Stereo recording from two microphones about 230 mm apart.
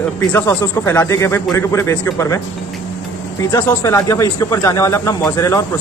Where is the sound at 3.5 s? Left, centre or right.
Centre.